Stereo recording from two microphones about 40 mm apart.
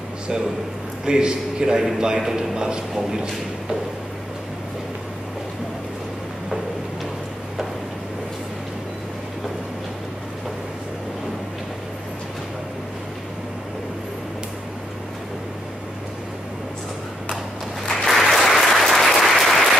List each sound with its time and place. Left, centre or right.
1.0 s a man's voice: centre
17.8 s applause: centre